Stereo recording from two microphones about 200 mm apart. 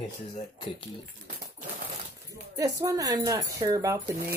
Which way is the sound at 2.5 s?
15° right (ahead or behind).